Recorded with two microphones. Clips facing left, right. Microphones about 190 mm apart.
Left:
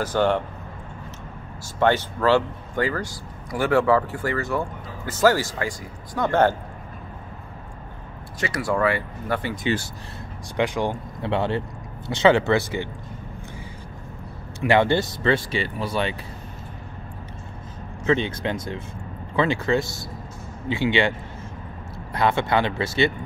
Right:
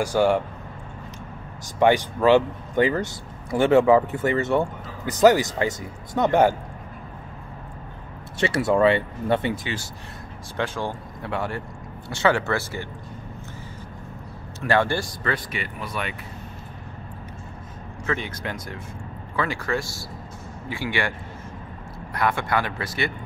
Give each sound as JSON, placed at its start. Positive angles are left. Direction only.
{"t": 0.0, "sound": "speech", "side_deg": -10}
{"t": 1.8, "sound": "speech", "side_deg": -15}
{"t": 8.4, "sound": "speech", "side_deg": -25}
{"t": 10.5, "sound": "speech", "side_deg": 15}
{"t": 14.6, "sound": "speech", "side_deg": 15}
{"t": 18.0, "sound": "speech", "side_deg": 25}
{"t": 22.1, "sound": "speech", "side_deg": 25}